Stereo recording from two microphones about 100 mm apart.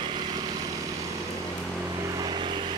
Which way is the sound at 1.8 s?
35° right (ahead or behind).